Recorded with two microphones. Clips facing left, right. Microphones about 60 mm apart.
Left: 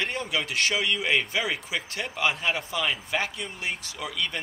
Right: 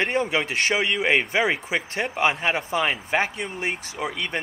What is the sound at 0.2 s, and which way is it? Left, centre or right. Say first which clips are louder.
Speech: right 4 dB; right.